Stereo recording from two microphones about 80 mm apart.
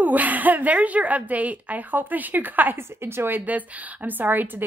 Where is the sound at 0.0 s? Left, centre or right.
Right.